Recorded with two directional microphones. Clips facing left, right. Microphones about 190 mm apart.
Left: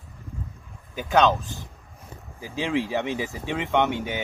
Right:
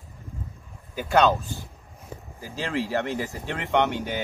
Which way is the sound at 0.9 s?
Centre (ahead or behind).